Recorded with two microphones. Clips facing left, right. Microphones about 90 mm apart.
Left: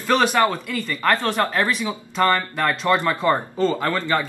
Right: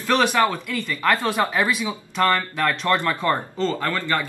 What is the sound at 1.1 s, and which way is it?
Speech, 15° right (ahead or behind).